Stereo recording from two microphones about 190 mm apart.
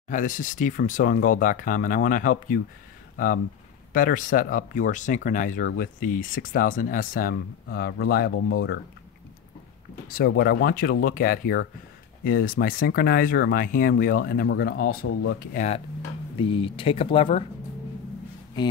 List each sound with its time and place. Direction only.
0.1 s speech: 45° left (ahead or behind)
3.9 s speech: 45° left (ahead or behind)
10.0 s speech: 50° left (ahead or behind)
15.5 s speech: 40° left (ahead or behind)
16.3 s speech: 25° left (ahead or behind)